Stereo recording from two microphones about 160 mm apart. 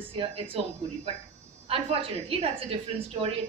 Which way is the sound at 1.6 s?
35° right (ahead or behind).